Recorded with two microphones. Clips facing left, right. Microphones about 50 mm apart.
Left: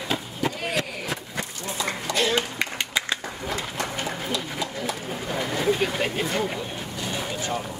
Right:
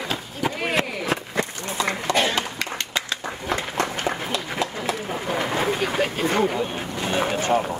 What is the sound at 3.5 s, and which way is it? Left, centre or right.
Run, right.